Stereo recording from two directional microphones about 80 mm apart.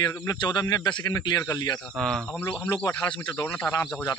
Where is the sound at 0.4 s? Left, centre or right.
Left.